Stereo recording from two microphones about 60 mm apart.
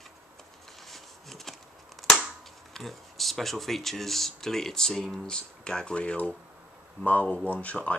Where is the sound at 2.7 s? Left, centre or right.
Centre; by 7.9 s left.